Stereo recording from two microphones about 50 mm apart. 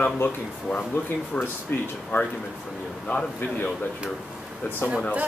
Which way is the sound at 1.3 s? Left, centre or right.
Left.